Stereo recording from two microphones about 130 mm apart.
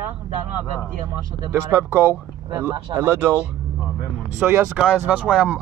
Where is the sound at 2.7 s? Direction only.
30° right (ahead or behind).